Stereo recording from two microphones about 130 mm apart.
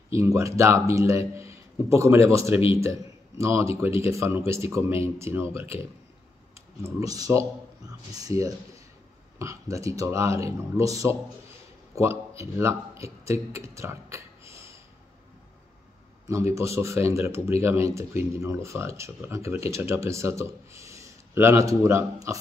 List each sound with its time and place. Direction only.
0.1 s speech: 25° right (ahead or behind)
2.5 s speech: 45° left (ahead or behind)
2.8 s a man's voice: 20° right (ahead or behind)
6.8 s speech: 25° right (ahead or behind)
16.3 s speech: 20° right (ahead or behind)